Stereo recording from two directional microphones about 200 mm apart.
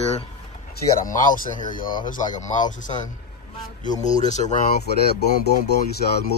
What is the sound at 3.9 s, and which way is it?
Speech, 40° left (ahead or behind).